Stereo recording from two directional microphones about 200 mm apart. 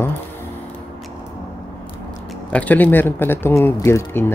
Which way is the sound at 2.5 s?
10° left (ahead or behind).